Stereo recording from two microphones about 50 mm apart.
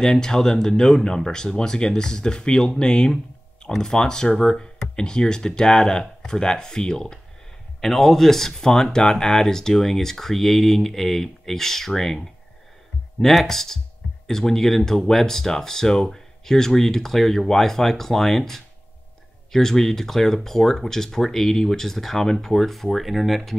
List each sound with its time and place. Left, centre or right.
0.0 s speech: centre